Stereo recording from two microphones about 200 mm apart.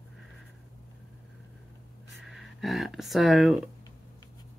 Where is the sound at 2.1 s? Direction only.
Centre (ahead or behind).